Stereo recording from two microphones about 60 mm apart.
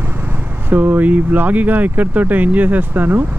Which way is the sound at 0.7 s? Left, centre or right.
Right.